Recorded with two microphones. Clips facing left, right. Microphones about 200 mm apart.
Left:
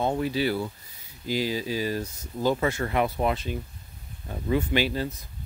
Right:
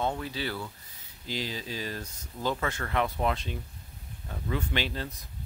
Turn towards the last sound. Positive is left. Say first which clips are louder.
# left 7 dB
turn(degrees=5)  # may be behind; listen again after turning